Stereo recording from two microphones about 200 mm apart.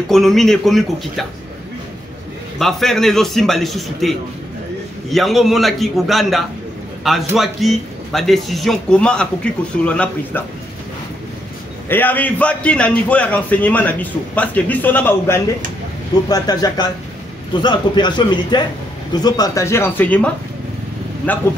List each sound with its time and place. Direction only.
0.1 s a man's voice: centre (ahead or behind)
2.6 s a man's voice: centre (ahead or behind)
11.9 s a man's voice: 10° left (ahead or behind)